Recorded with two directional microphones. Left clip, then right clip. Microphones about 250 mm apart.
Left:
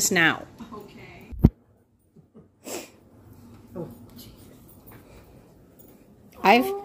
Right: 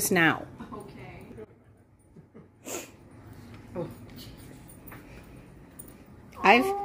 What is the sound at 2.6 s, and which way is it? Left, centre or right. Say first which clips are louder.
Sneeze: left 2 dB; left.